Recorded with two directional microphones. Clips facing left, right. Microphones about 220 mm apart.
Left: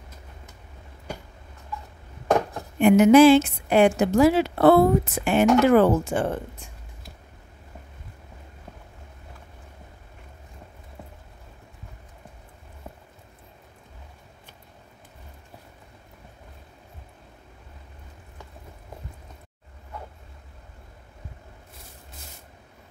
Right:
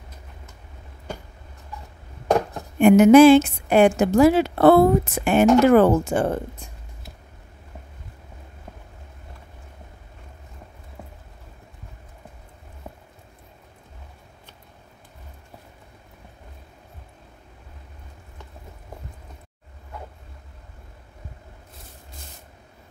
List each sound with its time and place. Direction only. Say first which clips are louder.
2.8 s a woman's voice: right 3 dB; 50° right (ahead or behind)